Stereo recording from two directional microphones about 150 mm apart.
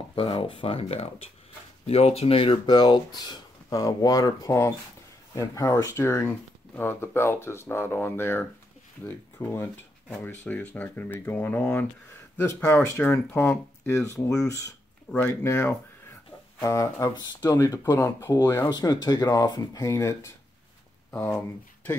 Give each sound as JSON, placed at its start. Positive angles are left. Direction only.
{"t": 0.1, "sound": "speech", "side_deg": 35}